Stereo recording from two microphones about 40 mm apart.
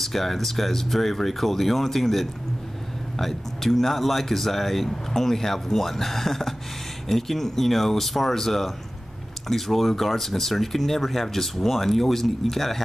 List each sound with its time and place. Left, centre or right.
0.0 s speech: centre